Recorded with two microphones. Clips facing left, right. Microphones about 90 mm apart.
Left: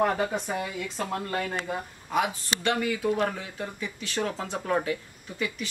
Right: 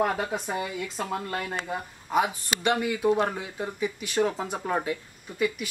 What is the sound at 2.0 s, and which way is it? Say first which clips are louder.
Speech: right 2 dB; 15° right (ahead or behind).